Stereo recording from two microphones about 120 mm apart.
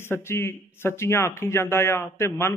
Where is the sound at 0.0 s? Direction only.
20° left (ahead or behind).